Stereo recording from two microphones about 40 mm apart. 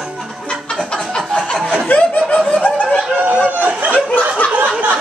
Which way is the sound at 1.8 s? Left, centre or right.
Left.